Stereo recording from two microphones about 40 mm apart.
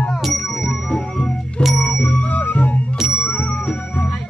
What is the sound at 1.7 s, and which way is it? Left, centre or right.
Music, left.